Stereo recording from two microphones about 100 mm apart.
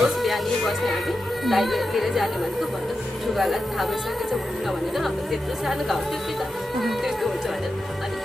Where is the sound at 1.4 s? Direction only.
Centre (ahead or behind).